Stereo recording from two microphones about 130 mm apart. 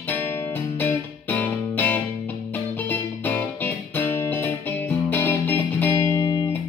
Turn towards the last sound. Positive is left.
turn(degrees=25)  # may be behind; listen again after turning